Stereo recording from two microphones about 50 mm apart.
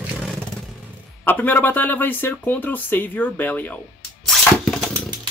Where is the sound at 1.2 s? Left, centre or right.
Left.